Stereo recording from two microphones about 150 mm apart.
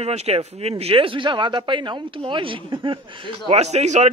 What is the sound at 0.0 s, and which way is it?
Speech, 45° right (ahead or behind).